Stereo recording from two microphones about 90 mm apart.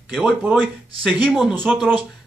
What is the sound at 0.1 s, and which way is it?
Speech, 15° right (ahead or behind).